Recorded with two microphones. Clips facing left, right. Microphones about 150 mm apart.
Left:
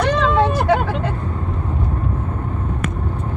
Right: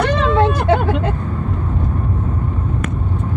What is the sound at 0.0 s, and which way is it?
Vehicle, 60° right (ahead or behind).